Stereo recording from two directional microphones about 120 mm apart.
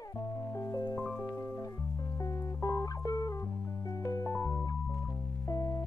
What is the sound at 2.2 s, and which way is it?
Music, 30° left (ahead or behind).